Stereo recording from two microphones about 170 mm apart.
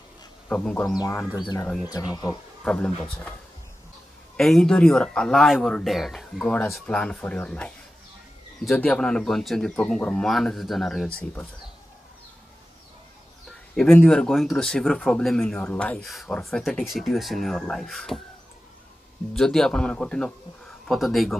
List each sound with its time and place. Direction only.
0.5 s speech: 10° left (ahead or behind)
1.9 s speech: 20° left (ahead or behind)
2.6 s speech: 5° left (ahead or behind)
4.4 s speech: 5° left (ahead or behind)
13.5 s speech: 5° left (ahead or behind)
19.3 s speech: 5° left (ahead or behind)